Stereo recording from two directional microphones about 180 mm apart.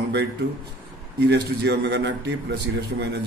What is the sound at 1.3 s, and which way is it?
A man's voice, 70° right (ahead or behind).